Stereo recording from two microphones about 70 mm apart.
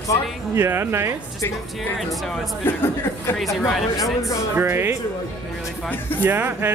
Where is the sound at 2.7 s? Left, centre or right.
Left.